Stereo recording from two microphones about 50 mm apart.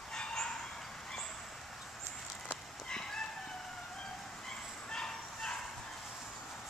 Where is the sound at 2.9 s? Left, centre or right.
Centre.